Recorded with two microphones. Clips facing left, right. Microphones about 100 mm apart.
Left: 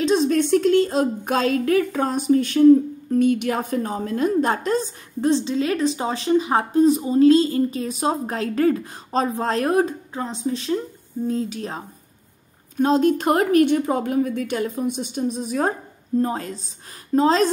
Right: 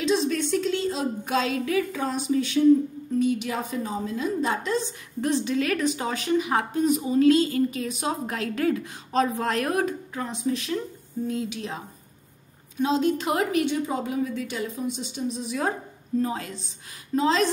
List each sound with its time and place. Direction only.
0.0 s a woman's voice: 45° left (ahead or behind)
5.2 s a woman's voice: 25° left (ahead or behind)